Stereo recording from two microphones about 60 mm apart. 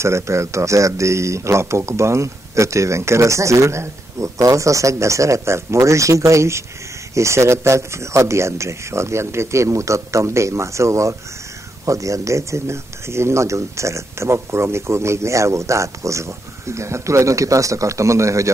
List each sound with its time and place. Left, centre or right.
0.0 s speech: right